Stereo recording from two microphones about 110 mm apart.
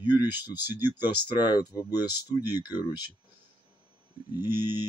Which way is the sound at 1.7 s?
35° left (ahead or behind).